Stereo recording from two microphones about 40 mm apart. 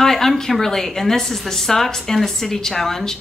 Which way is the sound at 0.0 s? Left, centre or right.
Centre.